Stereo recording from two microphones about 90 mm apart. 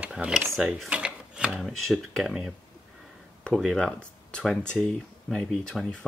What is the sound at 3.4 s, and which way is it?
Speech, 5° left (ahead or behind).